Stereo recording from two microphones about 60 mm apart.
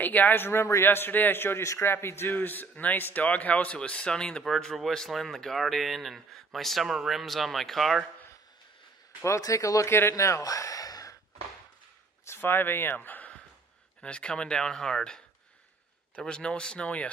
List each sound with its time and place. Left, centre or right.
0.0 s a man's voice: left
1.6 s a man's voice: left
1.9 s a man's voice: left
2.3 s a man's voice: left; by 8.0 s centre
9.2 s speech: left
9.8 s speech: left
10.1 s a sound: left
12.3 s speech: left
14.0 s speech: centre